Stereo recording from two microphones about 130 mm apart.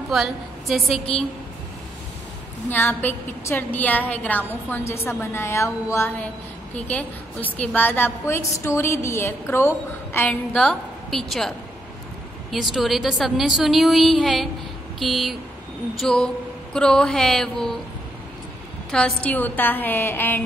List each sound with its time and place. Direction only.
0.1 s a woman's voice: centre (ahead or behind)
2.7 s a woman's voice: 15° left (ahead or behind)
18.9 s a woman's voice: 5° left (ahead or behind)